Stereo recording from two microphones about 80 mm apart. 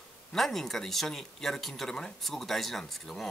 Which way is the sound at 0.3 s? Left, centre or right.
Centre.